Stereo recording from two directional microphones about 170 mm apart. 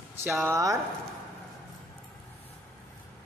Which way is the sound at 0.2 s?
15° right (ahead or behind).